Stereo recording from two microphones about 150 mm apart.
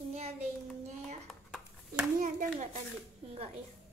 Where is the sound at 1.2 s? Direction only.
5° right (ahead or behind).